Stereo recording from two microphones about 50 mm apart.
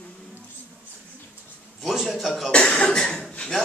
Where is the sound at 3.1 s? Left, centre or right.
Left.